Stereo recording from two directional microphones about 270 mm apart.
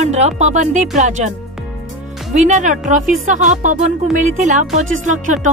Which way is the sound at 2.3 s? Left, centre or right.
Right.